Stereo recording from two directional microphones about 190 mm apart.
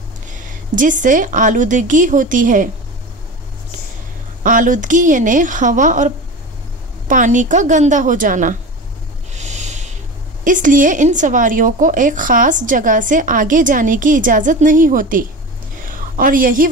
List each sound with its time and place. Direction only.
0.3 s speech: 45° right (ahead or behind)
4.4 s a woman's voice: 45° right (ahead or behind)
9.4 s a sound: 35° right (ahead or behind)
10.4 s speech: 45° right (ahead or behind)